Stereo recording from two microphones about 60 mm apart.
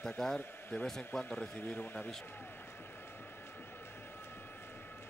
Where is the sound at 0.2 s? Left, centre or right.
Centre.